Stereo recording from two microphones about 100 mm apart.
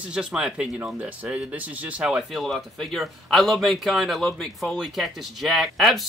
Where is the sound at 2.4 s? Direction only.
5° left (ahead or behind).